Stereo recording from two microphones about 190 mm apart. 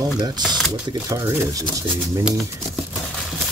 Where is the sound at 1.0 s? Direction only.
15° right (ahead or behind).